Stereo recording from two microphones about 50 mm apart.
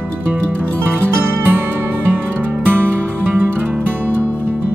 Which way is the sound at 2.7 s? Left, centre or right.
Right.